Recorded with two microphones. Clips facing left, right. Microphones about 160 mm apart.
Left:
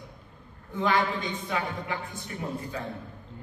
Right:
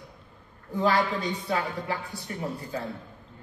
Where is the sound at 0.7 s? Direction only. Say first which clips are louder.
Right 2 dB; 40° right (ahead or behind).